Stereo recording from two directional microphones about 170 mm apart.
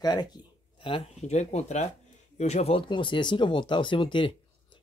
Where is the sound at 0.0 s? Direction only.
25° left (ahead or behind).